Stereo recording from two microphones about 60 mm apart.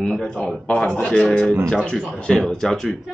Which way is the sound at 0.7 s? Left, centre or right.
Centre.